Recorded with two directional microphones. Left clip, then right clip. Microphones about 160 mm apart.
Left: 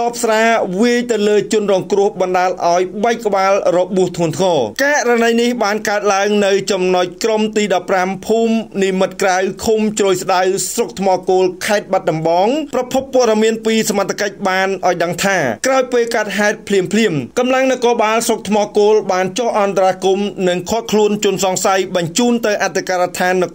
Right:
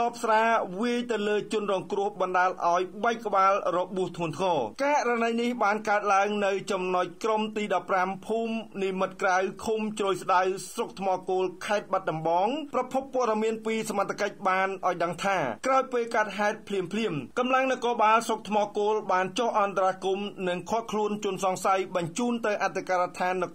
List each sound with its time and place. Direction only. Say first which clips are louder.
0.0 s speech: left 10 dB; 25° left (ahead or behind)